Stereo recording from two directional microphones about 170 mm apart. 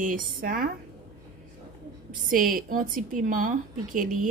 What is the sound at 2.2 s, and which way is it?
A woman's voice, 55° right (ahead or behind).